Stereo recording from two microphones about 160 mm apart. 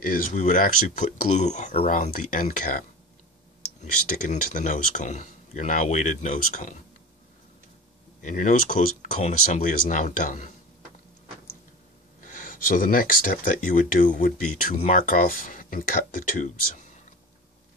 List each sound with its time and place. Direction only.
0.2 s speech: 55° left (ahead or behind)
4.3 s speech: 55° left (ahead or behind)
8.2 s speech: 50° left (ahead or behind)
12.2 s speech: 55° left (ahead or behind)